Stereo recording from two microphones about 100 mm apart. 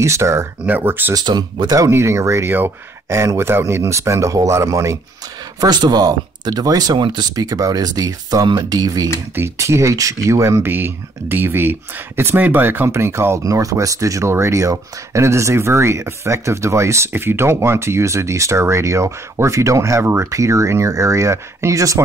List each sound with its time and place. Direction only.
0.0 s speech: 30° right (ahead or behind)
0.7 s speech: 20° right (ahead or behind)
1.1 s speech: 45° right (ahead or behind)
1.9 s speech: 25° right (ahead or behind)
5.6 s speech: 45° right (ahead or behind)
9.3 s speech: 25° right (ahead or behind)